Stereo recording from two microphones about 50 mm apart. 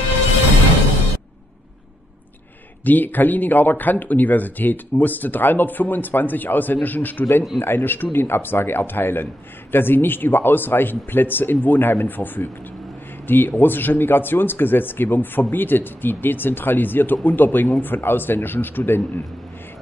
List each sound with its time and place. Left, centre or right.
2.8 s a man's voice: left
7.5 s speech: left